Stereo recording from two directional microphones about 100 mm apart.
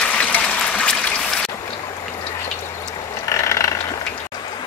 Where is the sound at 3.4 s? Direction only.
30° left (ahead or behind).